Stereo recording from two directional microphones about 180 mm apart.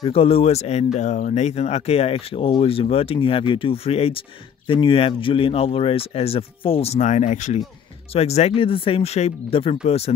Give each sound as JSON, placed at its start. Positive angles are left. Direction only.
{"t": 0.0, "sound": "speech", "side_deg": 30}